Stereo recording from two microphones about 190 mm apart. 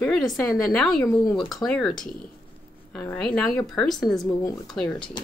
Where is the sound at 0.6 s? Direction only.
Centre (ahead or behind).